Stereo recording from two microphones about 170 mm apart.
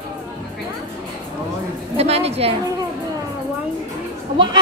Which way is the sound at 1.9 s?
35° right (ahead or behind).